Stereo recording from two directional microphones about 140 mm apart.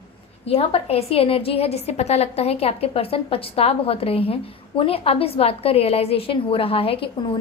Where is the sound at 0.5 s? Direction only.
45° left (ahead or behind).